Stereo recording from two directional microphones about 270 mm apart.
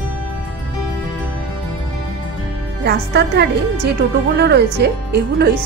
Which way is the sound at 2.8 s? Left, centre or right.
Right.